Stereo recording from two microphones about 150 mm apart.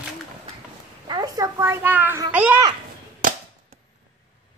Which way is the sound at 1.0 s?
25° right (ahead or behind).